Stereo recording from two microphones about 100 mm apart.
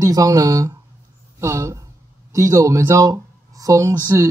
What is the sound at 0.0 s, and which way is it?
Speech, 35° right (ahead or behind).